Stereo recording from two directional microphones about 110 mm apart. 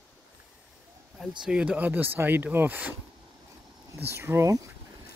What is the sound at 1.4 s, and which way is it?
Speech, 5° right (ahead or behind).